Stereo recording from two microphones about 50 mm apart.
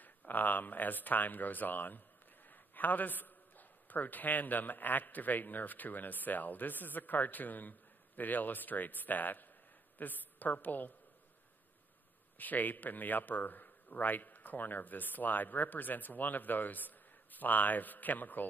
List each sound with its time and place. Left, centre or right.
0.3 s a man's voice: left
12.4 s a man's voice: left